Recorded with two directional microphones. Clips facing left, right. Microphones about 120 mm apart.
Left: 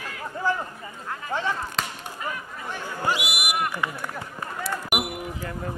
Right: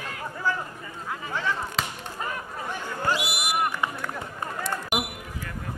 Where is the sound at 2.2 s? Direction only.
40° right (ahead or behind).